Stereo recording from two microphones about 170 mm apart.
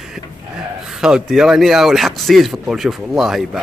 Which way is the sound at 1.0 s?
5° right (ahead or behind).